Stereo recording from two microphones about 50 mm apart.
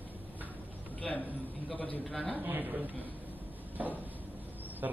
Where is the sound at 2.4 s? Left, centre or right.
Right.